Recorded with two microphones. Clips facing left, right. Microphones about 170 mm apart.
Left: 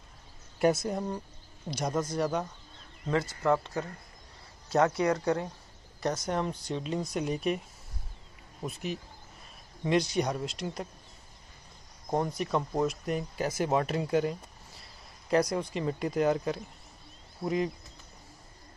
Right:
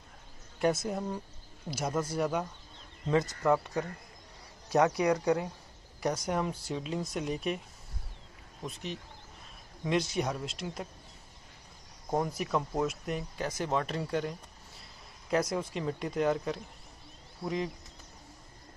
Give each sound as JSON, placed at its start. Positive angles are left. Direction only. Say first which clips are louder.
{"t": 0.6, "sound": "speech", "louder": "left 3 dB", "side_deg": 0}
{"t": 3.1, "sound": "speech", "louder": "even", "side_deg": -20}
{"t": 4.6, "sound": "speech", "louder": "even", "side_deg": -15}
{"t": 8.6, "sound": "speech", "louder": "left 4 dB", "side_deg": 5}
{"t": 12.1, "sound": "speech", "louder": "left 1 dB", "side_deg": -5}